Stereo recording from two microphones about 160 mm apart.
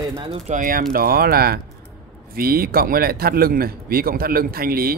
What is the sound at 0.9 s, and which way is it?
A man's voice, 65° right (ahead or behind).